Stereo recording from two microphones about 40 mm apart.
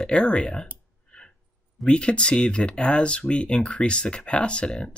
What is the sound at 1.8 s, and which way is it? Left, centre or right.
Speech, left.